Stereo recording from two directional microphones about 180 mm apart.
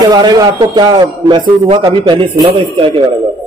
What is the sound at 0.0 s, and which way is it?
A man's voice, 20° right (ahead or behind).